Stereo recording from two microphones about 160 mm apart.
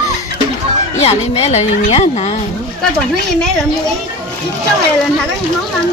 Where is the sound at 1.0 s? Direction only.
40° left (ahead or behind).